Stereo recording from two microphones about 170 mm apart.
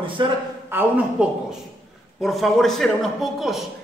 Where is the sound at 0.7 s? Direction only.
10° right (ahead or behind).